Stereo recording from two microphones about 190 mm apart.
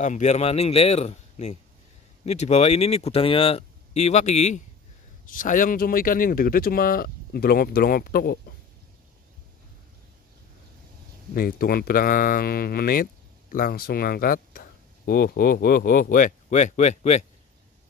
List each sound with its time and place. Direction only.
0.0 s speech: 40° left (ahead or behind)
11.3 s speech: 50° left (ahead or behind)